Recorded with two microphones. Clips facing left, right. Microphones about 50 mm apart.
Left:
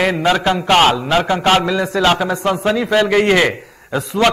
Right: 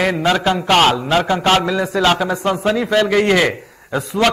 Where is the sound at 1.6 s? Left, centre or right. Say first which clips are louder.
Left 1 dB; centre.